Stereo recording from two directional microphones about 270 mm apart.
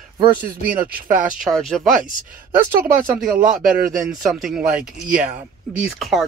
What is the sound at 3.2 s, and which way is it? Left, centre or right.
Speech, centre.